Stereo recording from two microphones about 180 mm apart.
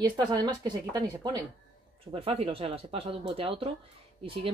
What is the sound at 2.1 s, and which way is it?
Speech, 35° right (ahead or behind).